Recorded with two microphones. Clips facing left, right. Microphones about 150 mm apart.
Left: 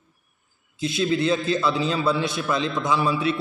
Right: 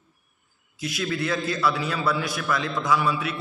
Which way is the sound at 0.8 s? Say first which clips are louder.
Left 5 dB; 25° left (ahead or behind).